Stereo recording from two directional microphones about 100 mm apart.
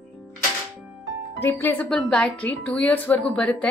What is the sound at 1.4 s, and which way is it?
A woman's voice, 20° left (ahead or behind).